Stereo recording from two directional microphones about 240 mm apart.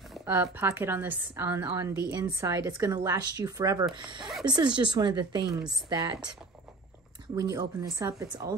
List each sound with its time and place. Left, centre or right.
0.2 s a woman's voice: centre
7.3 s a woman's voice: centre